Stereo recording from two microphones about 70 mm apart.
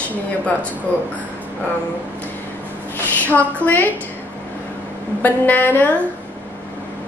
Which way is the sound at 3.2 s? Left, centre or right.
Left.